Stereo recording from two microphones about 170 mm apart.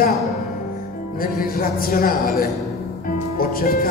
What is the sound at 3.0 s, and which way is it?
Music, 60° left (ahead or behind).